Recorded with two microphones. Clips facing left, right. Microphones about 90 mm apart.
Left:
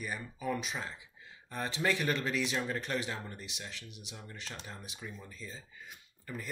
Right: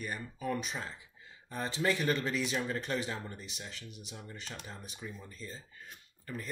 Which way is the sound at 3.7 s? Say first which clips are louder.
Right 1 dB; 40° right (ahead or behind).